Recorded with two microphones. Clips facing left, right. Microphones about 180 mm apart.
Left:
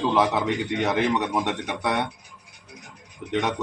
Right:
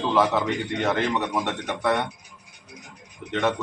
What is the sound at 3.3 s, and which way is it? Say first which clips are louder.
Speech: right 1 dB; 15° left (ahead or behind).